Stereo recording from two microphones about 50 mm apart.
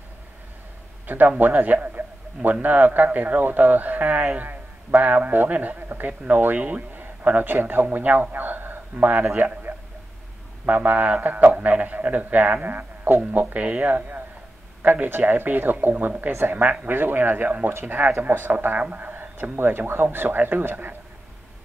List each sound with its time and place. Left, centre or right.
1.0 s a man's voice: right
9.4 s a sound: right
10.6 s speech: right
12.6 s a sound: right
13.3 s speech: right
13.6 s speech: right
16.3 s speech: right
16.8 s speech: right
18.8 s speech: right
19.5 s speech: right